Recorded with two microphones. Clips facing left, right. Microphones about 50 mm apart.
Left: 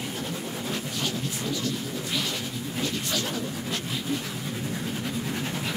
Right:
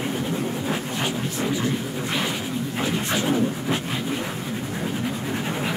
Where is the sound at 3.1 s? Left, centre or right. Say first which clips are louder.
Right 7 dB; right.